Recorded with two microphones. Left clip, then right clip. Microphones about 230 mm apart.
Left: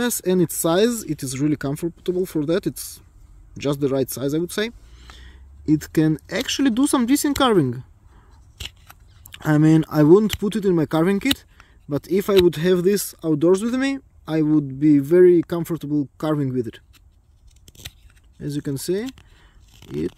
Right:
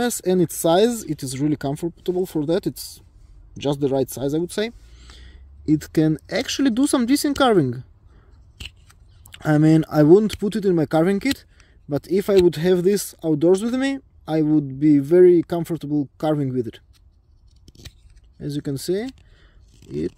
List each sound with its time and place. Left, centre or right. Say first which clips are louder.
0.0 s speech: even; centre
8.5 s scissors: left 3 dB; left
9.3 s speech: even; centre
18.4 s speech: even; centre